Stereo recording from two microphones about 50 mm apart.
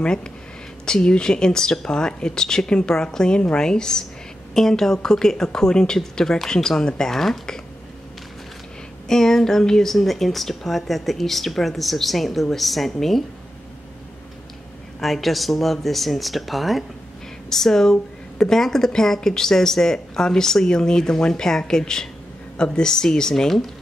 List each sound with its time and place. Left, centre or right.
0.0 s a woman's voice: centre
9.0 s speech: centre
15.0 s a woman's voice: centre